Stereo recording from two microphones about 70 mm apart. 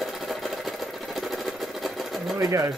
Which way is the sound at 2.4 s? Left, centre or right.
Right.